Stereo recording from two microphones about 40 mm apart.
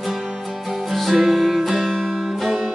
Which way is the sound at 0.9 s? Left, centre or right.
Centre.